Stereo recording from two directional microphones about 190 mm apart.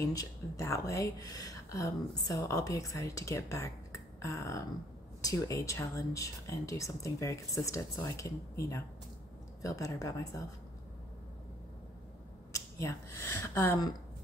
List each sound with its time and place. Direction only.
0.0 s speech: 15° left (ahead or behind)
12.5 s speech: 15° left (ahead or behind)